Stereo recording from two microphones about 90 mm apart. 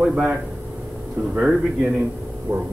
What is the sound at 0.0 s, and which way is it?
A man's voice, 15° right (ahead or behind).